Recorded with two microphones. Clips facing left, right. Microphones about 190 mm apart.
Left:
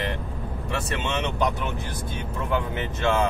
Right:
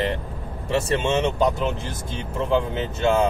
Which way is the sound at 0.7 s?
25° right (ahead or behind).